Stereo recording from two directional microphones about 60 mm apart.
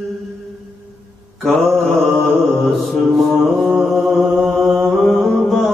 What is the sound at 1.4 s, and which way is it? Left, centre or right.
Mantra, centre.